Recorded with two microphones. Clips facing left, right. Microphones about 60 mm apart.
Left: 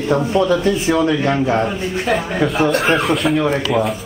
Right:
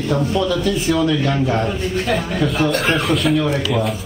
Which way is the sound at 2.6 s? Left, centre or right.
Centre.